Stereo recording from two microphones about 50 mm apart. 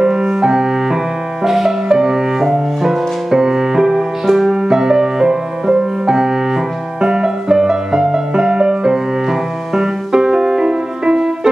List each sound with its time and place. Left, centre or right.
0.0 s music: centre